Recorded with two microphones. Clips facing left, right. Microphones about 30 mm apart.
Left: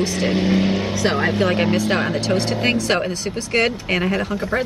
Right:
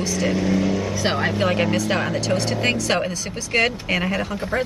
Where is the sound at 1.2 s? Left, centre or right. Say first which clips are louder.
Left 1 dB; centre.